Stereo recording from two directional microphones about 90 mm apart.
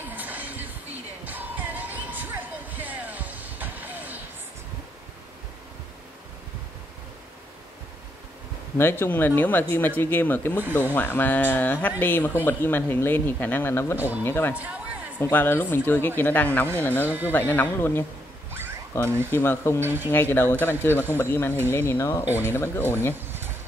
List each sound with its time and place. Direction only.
0.1 s music: 20° right (ahead or behind)
8.7 s speech: 25° left (ahead or behind)
13.9 s speech: 20° right (ahead or behind)
14.2 s speech: 25° left (ahead or behind)
14.5 s speech: 15° right (ahead or behind)
15.3 s speech: 25° left (ahead or behind)
19.8 s speech: 25° right (ahead or behind)
20.1 s speech: 25° left (ahead or behind)
22.2 s speech: 25° right (ahead or behind)
22.5 s speech: 20° left (ahead or behind)
23.1 s a sound: 25° right (ahead or behind)